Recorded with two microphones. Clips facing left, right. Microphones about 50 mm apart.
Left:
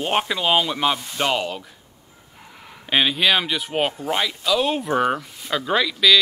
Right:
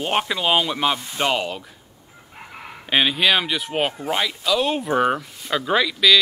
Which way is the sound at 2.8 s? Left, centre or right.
Centre.